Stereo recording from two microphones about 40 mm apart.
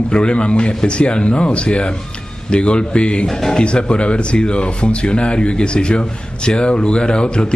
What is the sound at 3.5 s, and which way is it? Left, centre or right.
Speech, left.